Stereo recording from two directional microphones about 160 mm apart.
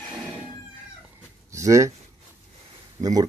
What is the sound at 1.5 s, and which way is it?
Speech, 20° right (ahead or behind).